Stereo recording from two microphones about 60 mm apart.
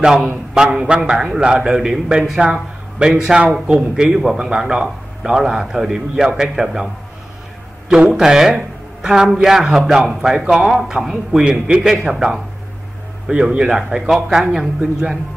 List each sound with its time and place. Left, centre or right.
0.7 s a man's voice: centre
7.9 s a man's voice: centre